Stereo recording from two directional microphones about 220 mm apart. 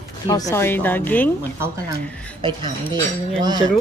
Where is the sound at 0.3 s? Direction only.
15° left (ahead or behind).